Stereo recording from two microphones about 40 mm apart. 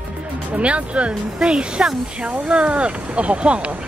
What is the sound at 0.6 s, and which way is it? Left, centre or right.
Speech, right.